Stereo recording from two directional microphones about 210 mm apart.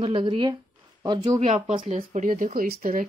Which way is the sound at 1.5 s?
35° right (ahead or behind).